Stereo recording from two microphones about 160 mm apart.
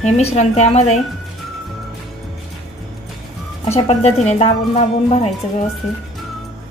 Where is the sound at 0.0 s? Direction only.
40° left (ahead or behind).